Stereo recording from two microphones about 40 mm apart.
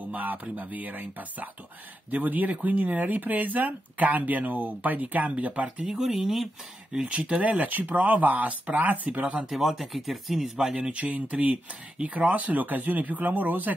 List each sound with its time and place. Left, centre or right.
0.1 s speech: right
5.9 s speech: centre
6.9 s speech: right
7.5 s speech: right
9.5 s speech: centre
10.9 s speech: right
11.1 s speech: right